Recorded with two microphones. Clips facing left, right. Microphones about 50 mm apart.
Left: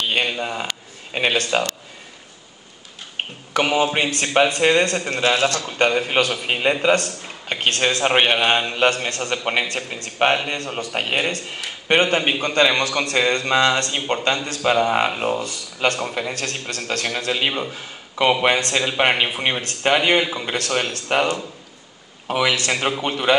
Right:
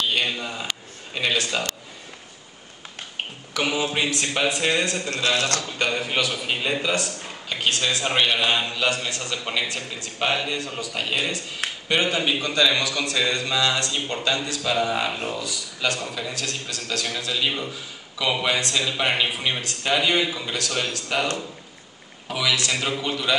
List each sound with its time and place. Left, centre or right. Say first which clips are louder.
0.1 s speech: left 3 dB; left
3.5 s a man's voice: left 5 dB; left
22.3 s a man's voice: left 4 dB; left